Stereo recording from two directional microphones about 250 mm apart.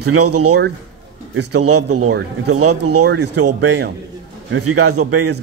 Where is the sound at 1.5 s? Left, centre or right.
Right.